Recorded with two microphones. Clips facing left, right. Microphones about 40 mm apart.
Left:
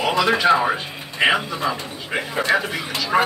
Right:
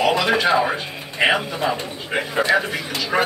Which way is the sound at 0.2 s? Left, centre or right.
Centre.